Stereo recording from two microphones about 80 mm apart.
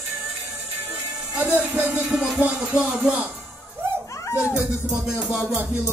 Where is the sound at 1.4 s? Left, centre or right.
Centre.